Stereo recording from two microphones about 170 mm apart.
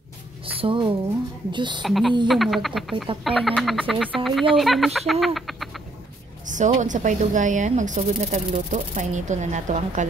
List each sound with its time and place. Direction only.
0.6 s a woman's voice: 30° right (ahead or behind)
1.8 s speech: centre (ahead or behind)
6.4 s speech: 45° right (ahead or behind)